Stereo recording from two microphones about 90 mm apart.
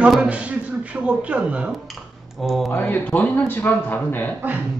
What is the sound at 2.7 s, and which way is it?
A man's voice, 20° left (ahead or behind).